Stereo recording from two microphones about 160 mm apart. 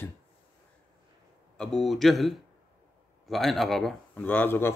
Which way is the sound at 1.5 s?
5° left (ahead or behind).